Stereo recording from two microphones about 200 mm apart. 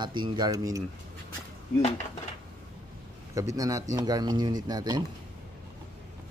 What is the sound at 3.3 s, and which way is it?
Speech, 15° right (ahead or behind).